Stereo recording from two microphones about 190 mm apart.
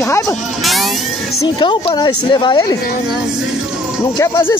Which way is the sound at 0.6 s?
Centre (ahead or behind).